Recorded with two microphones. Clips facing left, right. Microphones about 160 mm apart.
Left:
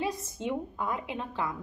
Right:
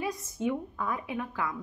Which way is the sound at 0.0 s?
25° left (ahead or behind).